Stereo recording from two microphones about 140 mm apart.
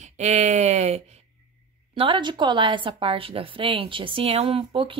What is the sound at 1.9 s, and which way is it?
Speech, 35° right (ahead or behind).